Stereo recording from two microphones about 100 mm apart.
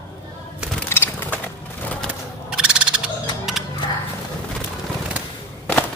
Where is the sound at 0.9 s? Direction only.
20° left (ahead or behind).